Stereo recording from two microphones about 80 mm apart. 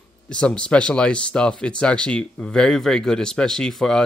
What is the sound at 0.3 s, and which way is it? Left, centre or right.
Speech, centre.